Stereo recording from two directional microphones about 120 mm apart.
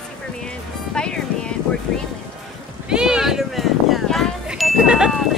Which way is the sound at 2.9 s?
5° right (ahead or behind).